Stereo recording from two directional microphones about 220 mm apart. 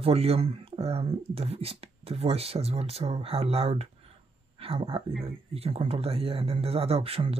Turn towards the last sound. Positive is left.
turn(degrees=-25)  # may be behind; listen again after turning